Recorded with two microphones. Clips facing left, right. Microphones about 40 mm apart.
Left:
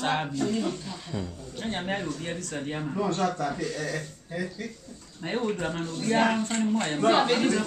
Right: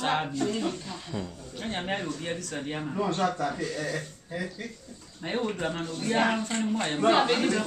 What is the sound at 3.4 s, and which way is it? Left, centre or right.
Speech, centre.